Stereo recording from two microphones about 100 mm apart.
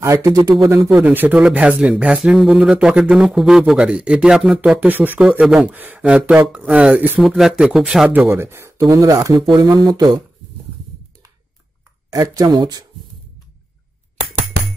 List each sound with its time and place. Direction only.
0.0 s speech: 35° right (ahead or behind)
1.0 s speech: 15° right (ahead or behind)
8.1 s speech: 20° right (ahead or behind)
9.5 s speech: 45° right (ahead or behind)
12.1 s speech: 35° right (ahead or behind)